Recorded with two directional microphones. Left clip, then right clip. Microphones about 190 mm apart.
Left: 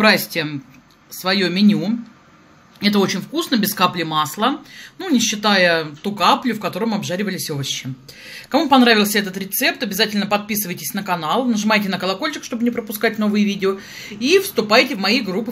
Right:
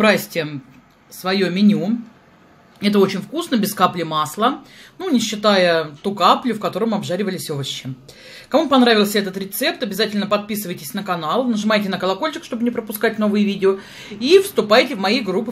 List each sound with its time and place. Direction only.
0.0 s speech: 10° right (ahead or behind)